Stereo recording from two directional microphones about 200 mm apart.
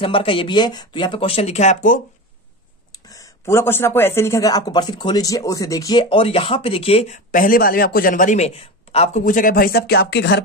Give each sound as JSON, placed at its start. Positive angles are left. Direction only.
{"t": 0.0, "sound": "speech", "side_deg": 25}
{"t": 3.1, "sound": "speech", "side_deg": 15}
{"t": 7.2, "sound": "a man's voice", "side_deg": 45}